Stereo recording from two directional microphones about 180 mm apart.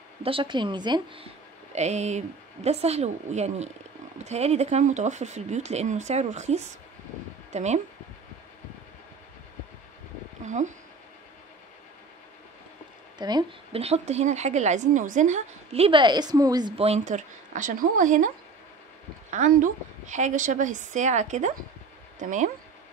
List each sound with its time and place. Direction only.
0.2 s a woman's voice: 30° right (ahead or behind)
1.7 s a woman's voice: 40° right (ahead or behind)
10.4 s a sound: 40° right (ahead or behind)
13.2 s a woman's voice: 25° right (ahead or behind); by 18.3 s 45° right (ahead or behind)
19.3 s a woman's voice: 45° right (ahead or behind)